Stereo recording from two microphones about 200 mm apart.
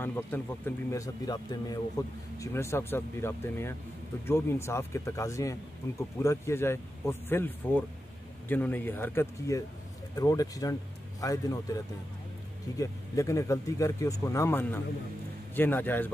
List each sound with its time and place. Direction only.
0.0 s speech: 10° left (ahead or behind)